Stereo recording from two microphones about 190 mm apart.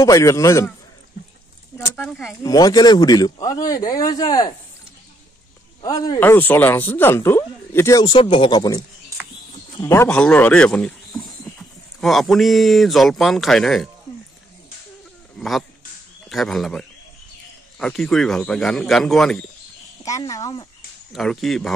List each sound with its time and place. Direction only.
0.0 s a man's voice: 15° left (ahead or behind)
2.0 s speech: centre (ahead or behind)
2.4 s a man's voice: 20° left (ahead or behind)
5.8 s a man's voice: 20° left (ahead or behind)
12.0 s speech: centre (ahead or behind)
15.3 s speech: centre (ahead or behind)
20.1 s a man's voice: 15° left (ahead or behind)
21.1 s speech: centre (ahead or behind)